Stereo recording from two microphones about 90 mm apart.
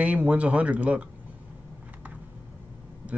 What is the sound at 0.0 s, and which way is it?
Speech, 15° right (ahead or behind).